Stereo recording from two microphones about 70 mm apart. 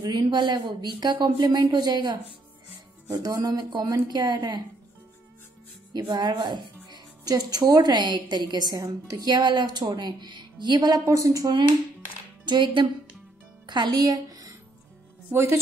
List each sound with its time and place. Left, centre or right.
0.0 s speech: right
3.1 s speech: right
3.3 s speech: right
4.1 s speech: right
5.9 s speech: right
11.1 s speech: right
13.7 s music: right
15.3 s a woman's voice: right